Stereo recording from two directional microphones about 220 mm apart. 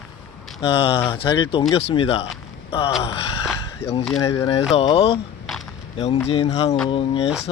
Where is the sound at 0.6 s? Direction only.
25° left (ahead or behind).